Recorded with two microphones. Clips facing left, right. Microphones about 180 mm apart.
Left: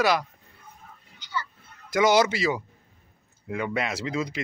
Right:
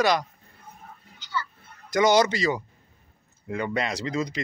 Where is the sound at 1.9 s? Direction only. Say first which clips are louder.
Right 1 dB; 5° left (ahead or behind).